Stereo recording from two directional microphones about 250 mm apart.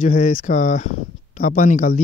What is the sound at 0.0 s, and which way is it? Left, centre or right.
Speech, left.